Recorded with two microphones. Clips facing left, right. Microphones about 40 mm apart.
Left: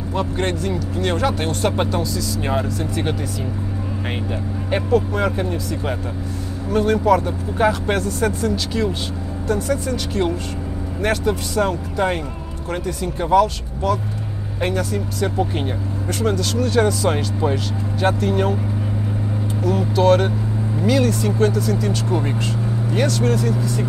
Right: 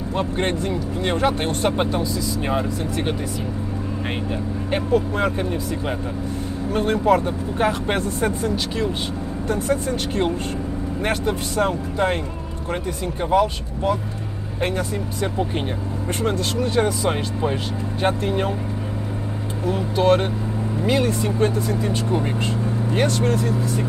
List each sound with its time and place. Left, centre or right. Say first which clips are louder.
0.1 s speech: left 1 dB; right
1.7 s speech: even; centre
2.4 s speech: left 2 dB; centre
4.6 s speech: left 2 dB; centre
6.7 s speech: left 2 dB; right
9.5 s speech: left 1 dB; right
11.0 s speech: left 3 dB; right
12.7 s speech: left 2 dB; centre
16.2 s speech: left 2 dB; right
19.6 s speech: left 2 dB; right